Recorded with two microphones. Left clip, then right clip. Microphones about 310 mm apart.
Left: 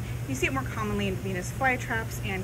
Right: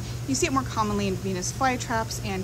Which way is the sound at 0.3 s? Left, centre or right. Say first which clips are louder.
Right 4 dB; centre.